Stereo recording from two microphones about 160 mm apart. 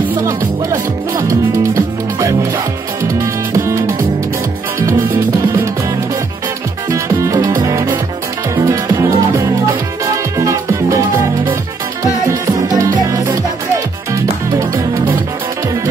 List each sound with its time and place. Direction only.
1.1 s music: 20° right (ahead or behind)
6.9 s music: 20° right (ahead or behind)